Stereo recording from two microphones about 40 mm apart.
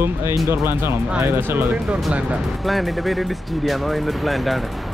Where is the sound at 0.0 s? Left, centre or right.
Right.